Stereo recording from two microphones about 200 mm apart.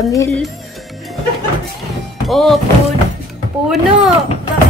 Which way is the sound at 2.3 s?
Centre (ahead or behind).